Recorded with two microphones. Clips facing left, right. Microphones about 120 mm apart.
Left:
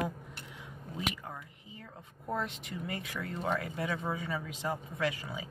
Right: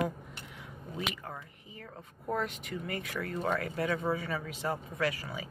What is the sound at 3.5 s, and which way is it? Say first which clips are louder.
Speech: right 2 dB; 20° left (ahead or behind).